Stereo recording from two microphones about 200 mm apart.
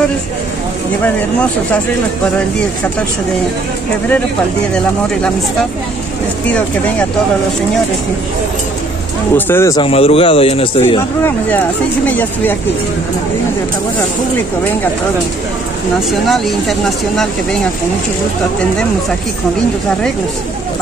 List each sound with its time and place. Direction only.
1.0 s speech: 5° left (ahead or behind)
9.3 s speech: 10° left (ahead or behind)
9.8 s speech: 30° left (ahead or behind)
12.1 s speech: 10° left (ahead or behind)
16.1 s speech: centre (ahead or behind)